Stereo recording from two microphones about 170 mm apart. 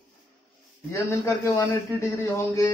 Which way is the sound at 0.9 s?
20° left (ahead or behind).